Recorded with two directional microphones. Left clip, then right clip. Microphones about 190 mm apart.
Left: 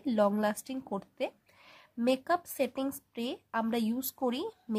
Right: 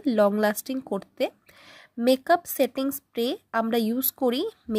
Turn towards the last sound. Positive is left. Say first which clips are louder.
# right 8 dB
turn(degrees=-20)  # may be behind; listen again after turning